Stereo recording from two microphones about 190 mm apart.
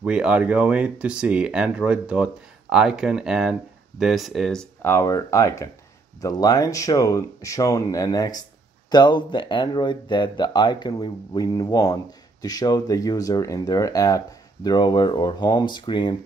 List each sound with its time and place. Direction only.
0.0 s speech: 5° right (ahead or behind); by 16.2 s 25° left (ahead or behind)